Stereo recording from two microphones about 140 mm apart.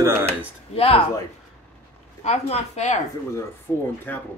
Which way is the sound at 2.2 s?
50° left (ahead or behind).